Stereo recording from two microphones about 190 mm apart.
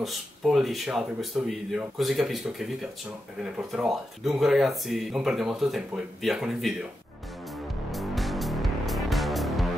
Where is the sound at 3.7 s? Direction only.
Centre (ahead or behind).